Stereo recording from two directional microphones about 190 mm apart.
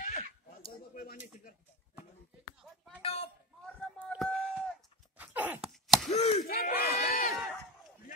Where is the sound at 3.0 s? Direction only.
30° left (ahead or behind).